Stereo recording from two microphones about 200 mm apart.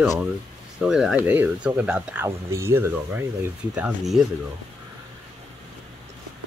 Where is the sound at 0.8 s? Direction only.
5° right (ahead or behind).